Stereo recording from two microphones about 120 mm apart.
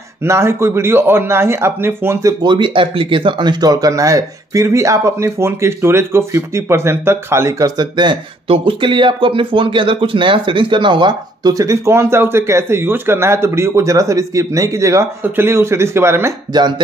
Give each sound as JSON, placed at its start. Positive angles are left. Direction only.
{"t": 0.2, "sound": "speech", "side_deg": -20}
{"t": 2.4, "sound": "speech", "side_deg": -40}
{"t": 16.5, "sound": "speech", "side_deg": -40}